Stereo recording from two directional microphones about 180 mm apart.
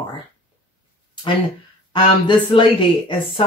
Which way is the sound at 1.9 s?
25° left (ahead or behind).